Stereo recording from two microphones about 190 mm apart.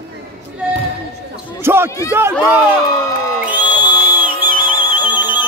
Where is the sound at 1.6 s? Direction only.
10° right (ahead or behind).